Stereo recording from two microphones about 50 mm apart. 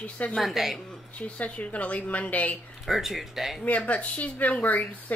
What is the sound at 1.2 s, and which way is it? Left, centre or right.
Speech, left.